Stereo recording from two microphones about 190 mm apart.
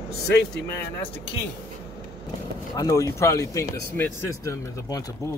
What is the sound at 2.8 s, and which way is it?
Speech, 20° left (ahead or behind).